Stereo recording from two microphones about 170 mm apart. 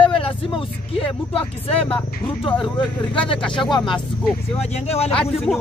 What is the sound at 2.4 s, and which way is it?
Speech, 30° left (ahead or behind).